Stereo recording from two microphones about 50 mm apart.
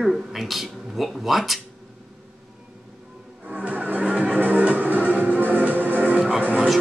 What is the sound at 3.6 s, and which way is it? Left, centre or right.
Music, right.